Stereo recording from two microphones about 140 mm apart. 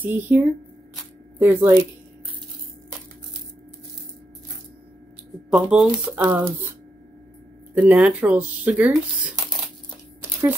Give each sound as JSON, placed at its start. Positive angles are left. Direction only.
{"t": 0.0, "sound": "speech", "side_deg": -15}
{"t": 1.4, "sound": "speech", "side_deg": -15}
{"t": 5.5, "sound": "speech", "side_deg": -5}
{"t": 7.7, "sound": "speech", "side_deg": -10}